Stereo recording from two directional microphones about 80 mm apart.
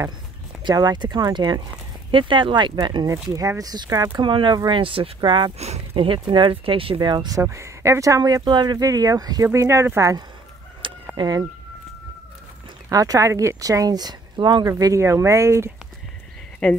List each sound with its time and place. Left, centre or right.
0.7 s speech: right
2.0 s speech: right
3.3 s speech: right
4.2 s speech: right
7.3 s speech: right
8.5 s speech: right
8.7 s speech: right
9.5 s speech: right
10.8 s chicken: right
11.1 s speech: right
12.9 s speech: right
15.0 s speech: right
16.6 s speech: centre